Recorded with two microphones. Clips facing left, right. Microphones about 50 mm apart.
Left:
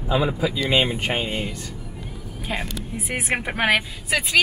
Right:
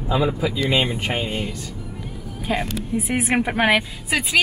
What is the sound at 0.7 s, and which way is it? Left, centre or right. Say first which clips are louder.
Speech: left 1 dB; left.